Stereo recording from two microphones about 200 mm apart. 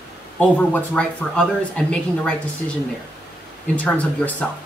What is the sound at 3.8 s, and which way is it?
Speech, 5° left (ahead or behind).